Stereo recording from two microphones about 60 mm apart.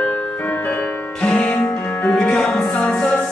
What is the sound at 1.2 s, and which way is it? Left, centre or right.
Music, centre.